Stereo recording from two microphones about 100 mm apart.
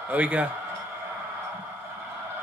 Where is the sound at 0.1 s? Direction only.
15° right (ahead or behind).